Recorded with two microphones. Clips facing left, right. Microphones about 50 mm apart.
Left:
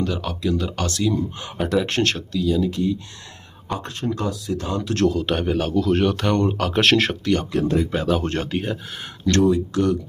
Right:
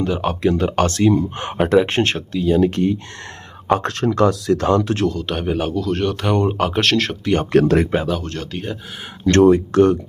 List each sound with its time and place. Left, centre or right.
0.2 s speech: right
1.8 s speech: right
2.6 s speech: right
3.6 s speech: right
5.0 s speech: centre
5.4 s speech: centre
5.8 s speech: centre
6.2 s speech: centre
6.8 s speech: centre
7.5 s speech: right
8.2 s speech: left
8.5 s speech: centre
9.2 s speech: right